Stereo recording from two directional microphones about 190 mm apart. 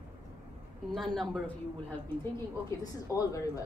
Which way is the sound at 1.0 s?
Centre (ahead or behind).